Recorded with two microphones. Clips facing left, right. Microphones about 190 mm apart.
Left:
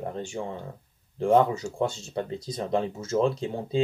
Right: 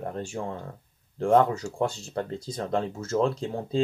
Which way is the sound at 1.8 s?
35° right (ahead or behind).